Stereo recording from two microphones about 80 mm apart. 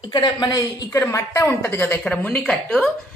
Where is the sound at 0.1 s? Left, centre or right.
Left.